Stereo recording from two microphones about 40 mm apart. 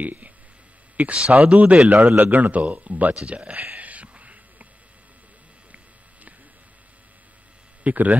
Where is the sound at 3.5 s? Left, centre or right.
Right.